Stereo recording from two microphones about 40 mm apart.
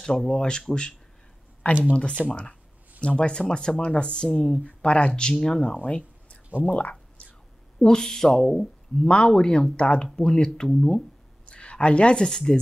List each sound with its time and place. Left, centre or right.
0.0 s speech: centre
1.6 s speech: left
2.2 s speech: centre
3.0 s speech: left
5.9 s a sound: left
6.6 s speech: left
7.8 s speech: centre
9.0 s speech: left
10.7 s speech: centre
11.4 s a sound: left
12.3 s speech: centre